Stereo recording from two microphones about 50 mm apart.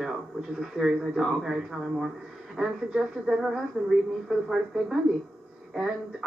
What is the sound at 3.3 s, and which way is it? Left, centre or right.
A man's voice, centre.